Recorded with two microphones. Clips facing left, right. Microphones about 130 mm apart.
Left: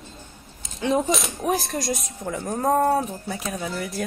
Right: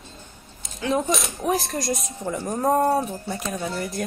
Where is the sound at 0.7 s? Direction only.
30° left (ahead or behind).